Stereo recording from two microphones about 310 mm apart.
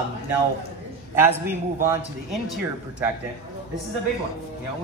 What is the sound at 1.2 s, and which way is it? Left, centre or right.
A man's voice, centre.